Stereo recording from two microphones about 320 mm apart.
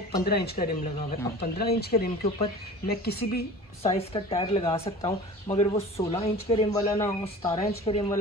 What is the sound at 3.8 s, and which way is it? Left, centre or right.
Speech, centre.